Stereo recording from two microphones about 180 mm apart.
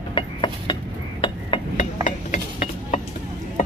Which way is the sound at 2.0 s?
40° left (ahead or behind).